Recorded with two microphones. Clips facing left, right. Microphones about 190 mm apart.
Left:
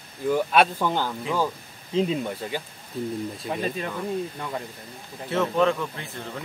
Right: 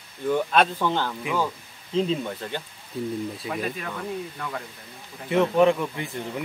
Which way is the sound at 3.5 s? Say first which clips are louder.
Left 4 dB; 30° left (ahead or behind).